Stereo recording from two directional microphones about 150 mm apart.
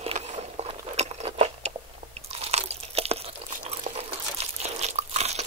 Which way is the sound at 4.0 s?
45° right (ahead or behind).